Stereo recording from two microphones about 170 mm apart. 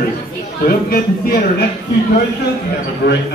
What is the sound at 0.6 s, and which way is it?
Speech, 60° left (ahead or behind).